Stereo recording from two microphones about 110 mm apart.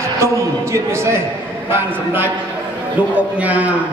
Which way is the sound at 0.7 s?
25° right (ahead or behind).